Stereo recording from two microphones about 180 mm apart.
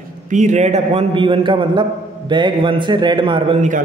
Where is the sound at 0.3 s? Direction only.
40° right (ahead or behind).